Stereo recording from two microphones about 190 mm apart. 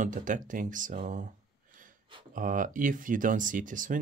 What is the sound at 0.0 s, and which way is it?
Speech, 40° right (ahead or behind).